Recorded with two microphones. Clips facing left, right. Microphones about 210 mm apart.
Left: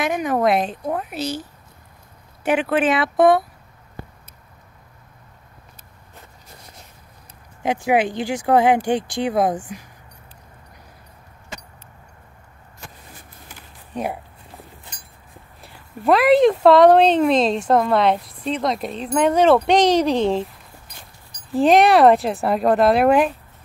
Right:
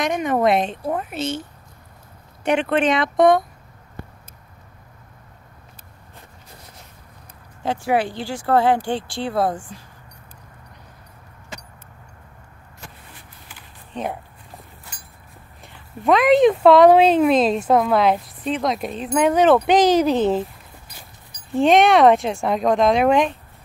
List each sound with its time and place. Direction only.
0.0 s speech: centre (ahead or behind)
2.4 s speech: 5° left (ahead or behind)
7.6 s speech: 15° left (ahead or behind)
13.9 s speech: 10° left (ahead or behind)
15.6 s speech: centre (ahead or behind)
21.5 s speech: centre (ahead or behind)